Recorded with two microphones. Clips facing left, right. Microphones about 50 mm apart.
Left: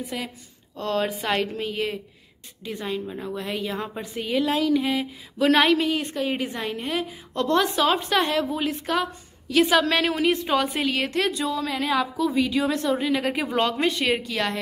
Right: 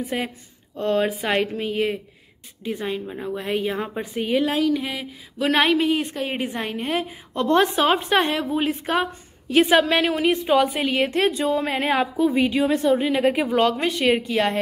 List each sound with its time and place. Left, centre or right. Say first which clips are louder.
0.0 s speech: right 5 dB; right
0.7 s speech: right 4 dB; centre
4.6 s a woman's voice: even; centre; by 12.6 s right
12.6 s speech: right 4 dB; centre
13.5 s speech: right 3 dB; centre
14.2 s a woman's voice: right 5 dB; right